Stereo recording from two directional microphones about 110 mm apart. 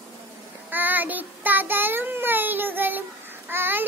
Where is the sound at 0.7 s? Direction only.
15° right (ahead or behind).